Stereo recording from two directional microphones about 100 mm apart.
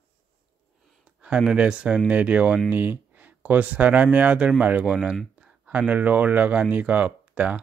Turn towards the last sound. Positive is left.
turn(degrees=-15)  # may be behind; listen again after turning